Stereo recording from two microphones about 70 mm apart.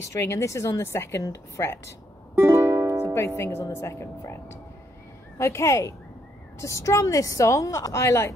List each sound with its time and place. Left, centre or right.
0.0 s speech: left
2.3 s music: right
3.2 s speech: left